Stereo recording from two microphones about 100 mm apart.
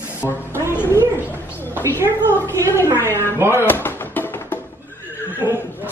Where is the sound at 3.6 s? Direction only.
20° left (ahead or behind).